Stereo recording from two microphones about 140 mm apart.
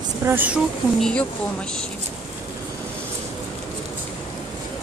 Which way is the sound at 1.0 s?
5° left (ahead or behind).